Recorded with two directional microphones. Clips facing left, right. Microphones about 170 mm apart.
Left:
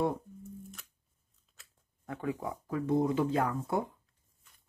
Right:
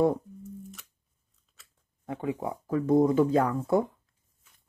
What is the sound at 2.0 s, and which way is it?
Speech, 25° right (ahead or behind).